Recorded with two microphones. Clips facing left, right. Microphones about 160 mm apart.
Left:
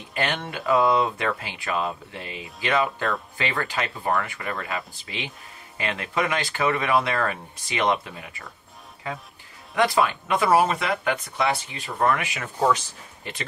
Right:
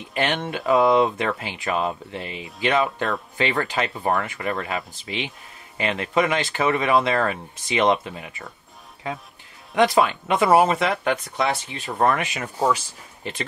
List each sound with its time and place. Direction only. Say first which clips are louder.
0.1 s speech: right 3 dB; 20° right (ahead or behind)
9.8 s speech: right 3 dB; 25° right (ahead or behind)
12.5 s speech: even; 10° right (ahead or behind)